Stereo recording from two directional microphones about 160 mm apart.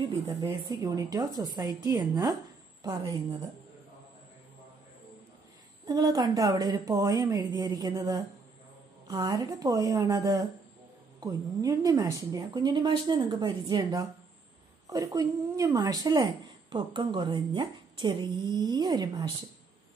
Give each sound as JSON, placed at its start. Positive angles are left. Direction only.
{"t": 0.5, "sound": "a woman's voice", "side_deg": -25}
{"t": 5.9, "sound": "a woman's voice", "side_deg": -25}